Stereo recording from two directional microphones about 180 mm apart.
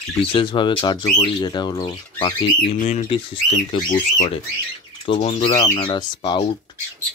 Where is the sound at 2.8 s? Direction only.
40° left (ahead or behind).